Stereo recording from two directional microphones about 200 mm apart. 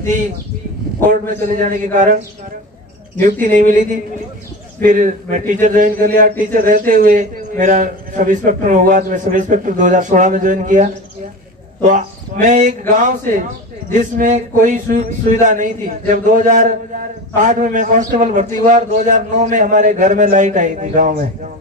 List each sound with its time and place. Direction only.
1.2 s a man's voice: 40° right (ahead or behind)
3.3 s a man's voice: 40° right (ahead or behind)